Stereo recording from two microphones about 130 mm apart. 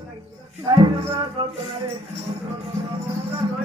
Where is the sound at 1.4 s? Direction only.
50° right (ahead or behind).